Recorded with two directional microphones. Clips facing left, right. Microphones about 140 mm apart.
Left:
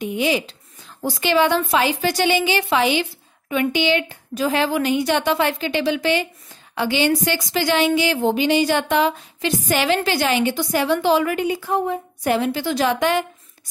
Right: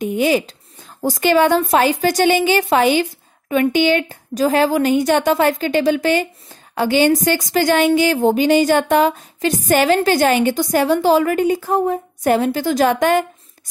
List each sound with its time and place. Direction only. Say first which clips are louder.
0.0 s speech: right 4 dB; 45° right (ahead or behind)